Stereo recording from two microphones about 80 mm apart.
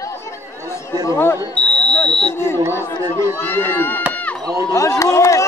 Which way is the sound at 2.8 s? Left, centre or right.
Left.